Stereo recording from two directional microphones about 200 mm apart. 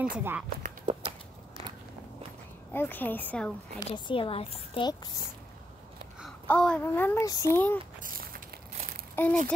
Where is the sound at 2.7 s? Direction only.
10° left (ahead or behind).